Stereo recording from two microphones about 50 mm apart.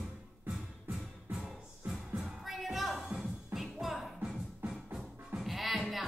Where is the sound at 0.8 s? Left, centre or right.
Centre.